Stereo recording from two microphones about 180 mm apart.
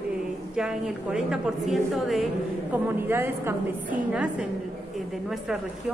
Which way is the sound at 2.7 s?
10° right (ahead or behind).